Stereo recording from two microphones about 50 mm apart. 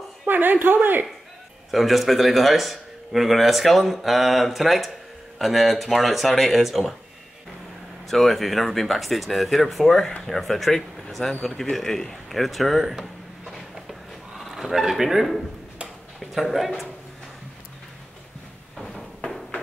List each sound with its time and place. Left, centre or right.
0.3 s speech: right
1.7 s speech: centre
8.1 s speech: centre
11.7 s a sound: centre
14.4 s speech: centre
18.8 s a sound: centre